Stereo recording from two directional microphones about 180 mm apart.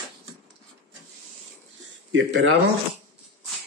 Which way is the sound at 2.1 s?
90° right.